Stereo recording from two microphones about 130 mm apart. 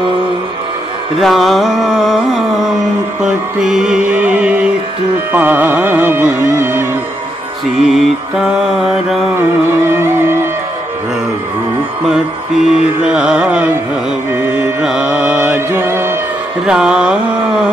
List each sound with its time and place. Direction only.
1.2 s music: centre (ahead or behind); by 6.9 s 15° right (ahead or behind)
7.8 s music: centre (ahead or behind)
9.8 s music: 20° right (ahead or behind)
13.0 s a sound: 5° right (ahead or behind)
14.5 s music: 5° right (ahead or behind)
16.6 s a sound: 5° right (ahead or behind)